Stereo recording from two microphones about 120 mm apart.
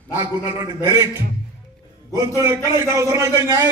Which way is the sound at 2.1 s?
25° right (ahead or behind).